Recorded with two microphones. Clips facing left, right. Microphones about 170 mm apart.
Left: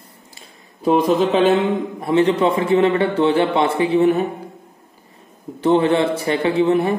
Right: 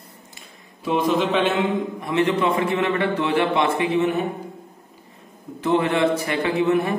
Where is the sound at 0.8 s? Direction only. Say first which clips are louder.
Left 5 dB; 40° left (ahead or behind).